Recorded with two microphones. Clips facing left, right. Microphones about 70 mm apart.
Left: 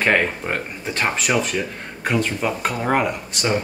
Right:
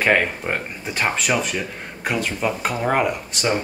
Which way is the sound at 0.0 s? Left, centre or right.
Centre.